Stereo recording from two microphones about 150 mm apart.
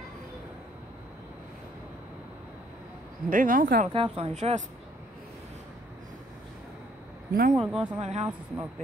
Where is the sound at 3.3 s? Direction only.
60° right (ahead or behind).